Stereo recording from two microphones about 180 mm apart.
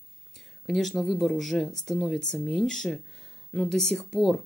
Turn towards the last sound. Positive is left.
turn(degrees=0)  # may be behind; listen again after turning